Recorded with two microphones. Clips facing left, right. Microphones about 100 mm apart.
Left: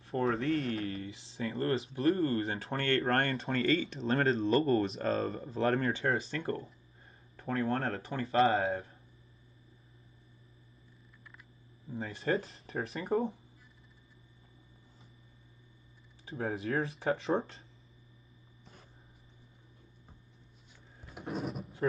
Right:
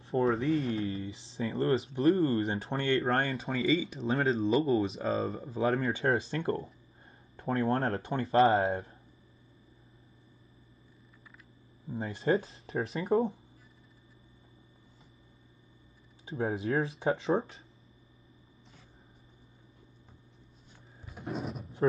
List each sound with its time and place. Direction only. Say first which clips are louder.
0.0 s a sound: right 4 dB; 30° right (ahead or behind)
0.3 s speech: right 3 dB; centre (ahead or behind)
0.7 s speech: right 3 dB; 30° right (ahead or behind)
3.0 s speech: right 1 dB; 5° right (ahead or behind)
6.0 s speech: right 3 dB; 30° right (ahead or behind)
11.9 s speech: right 4 dB; 30° right (ahead or behind)
16.3 s speech: right 3 dB; 30° right (ahead or behind)
21.1 s a sound: even; centre (ahead or behind)